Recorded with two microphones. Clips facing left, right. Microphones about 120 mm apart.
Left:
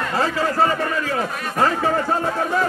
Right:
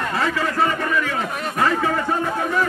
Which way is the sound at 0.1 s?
35° left (ahead or behind).